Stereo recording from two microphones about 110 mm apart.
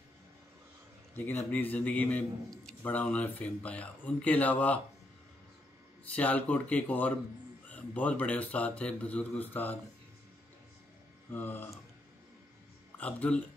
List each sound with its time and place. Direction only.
1.1 s speech: 15° left (ahead or behind)
6.1 s speech: 15° left (ahead or behind)
11.3 s speech: 20° left (ahead or behind)
12.9 s speech: 10° left (ahead or behind)